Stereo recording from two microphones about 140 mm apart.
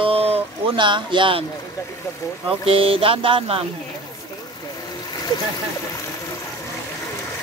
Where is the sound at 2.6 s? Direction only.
40° right (ahead or behind).